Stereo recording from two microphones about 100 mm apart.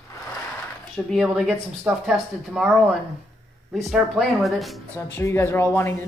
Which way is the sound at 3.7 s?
5° right (ahead or behind).